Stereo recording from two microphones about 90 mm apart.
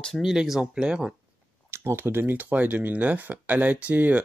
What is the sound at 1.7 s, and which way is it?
Speech, 30° right (ahead or behind).